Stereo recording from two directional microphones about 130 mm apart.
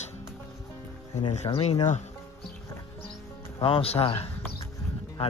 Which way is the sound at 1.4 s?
45° left (ahead or behind).